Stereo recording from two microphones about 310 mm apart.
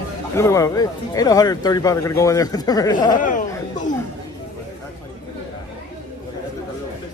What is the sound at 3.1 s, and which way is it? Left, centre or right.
Speech, left.